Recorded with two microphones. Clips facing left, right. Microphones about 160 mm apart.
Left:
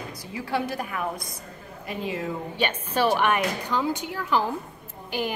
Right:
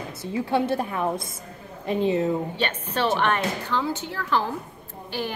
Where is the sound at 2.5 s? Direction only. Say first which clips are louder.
Left 1 dB; 10° left (ahead or behind).